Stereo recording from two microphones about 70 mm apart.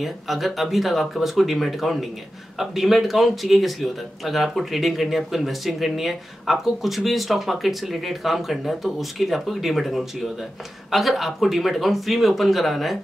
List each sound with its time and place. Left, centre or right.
0.0 s speech: centre